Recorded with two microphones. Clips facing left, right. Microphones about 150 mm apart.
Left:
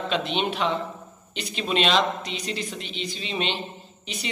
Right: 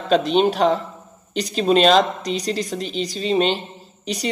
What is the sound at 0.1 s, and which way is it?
A man's voice, 40° right (ahead or behind).